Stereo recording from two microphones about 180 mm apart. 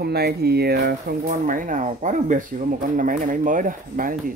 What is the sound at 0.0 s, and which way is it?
Speech, 60° right (ahead or behind).